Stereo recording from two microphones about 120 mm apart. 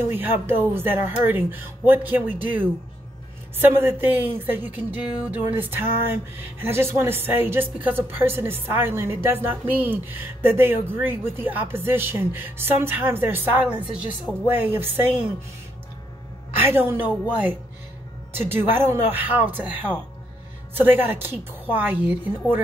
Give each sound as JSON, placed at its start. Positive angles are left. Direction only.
{"t": 0.1, "sound": "a woman's voice", "side_deg": -15}
{"t": 5.6, "sound": "a sound", "side_deg": -20}
{"t": 6.6, "sound": "a woman's voice", "side_deg": -20}
{"t": 16.6, "sound": "a woman's voice", "side_deg": -20}